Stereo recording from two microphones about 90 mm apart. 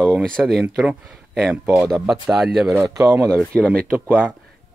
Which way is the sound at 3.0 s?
25° right (ahead or behind).